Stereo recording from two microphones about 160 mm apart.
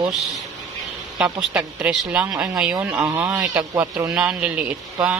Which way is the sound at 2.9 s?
20° right (ahead or behind).